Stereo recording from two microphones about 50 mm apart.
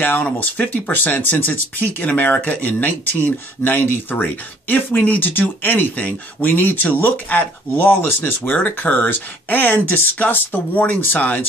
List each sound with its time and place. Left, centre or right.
0.0 s speech: left